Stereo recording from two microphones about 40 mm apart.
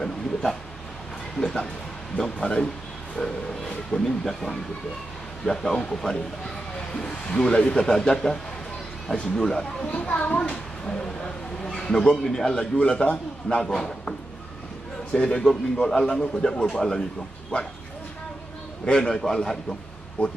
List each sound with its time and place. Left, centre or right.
0.0 s a sound: centre
1.4 s a man's voice: centre
9.8 s a child's voice: left
10.5 s a man's voice: centre
12.7 s a man's voice: left
13.7 s speech: centre
15.1 s a man's voice: centre
19.0 s speech: centre
20.2 s a child's voice: left